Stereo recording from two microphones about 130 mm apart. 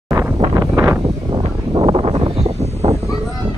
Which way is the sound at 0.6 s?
25° right (ahead or behind).